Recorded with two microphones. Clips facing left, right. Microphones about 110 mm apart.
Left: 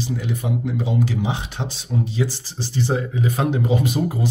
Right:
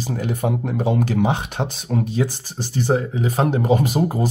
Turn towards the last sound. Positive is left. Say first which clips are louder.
# right 2 dB
turn(degrees=-40)  # may be behind; listen again after turning